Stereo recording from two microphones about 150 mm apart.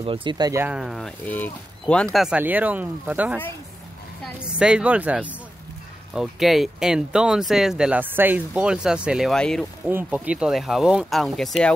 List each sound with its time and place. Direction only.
0.0 s speech: 35° right (ahead or behind)
0.6 s speech: 5° right (ahead or behind); by 2.0 s 10° left (ahead or behind)
2.1 s speech: 5° right (ahead or behind)
4.6 s speech: 5° right (ahead or behind)
9.8 s speech: 10° right (ahead or behind)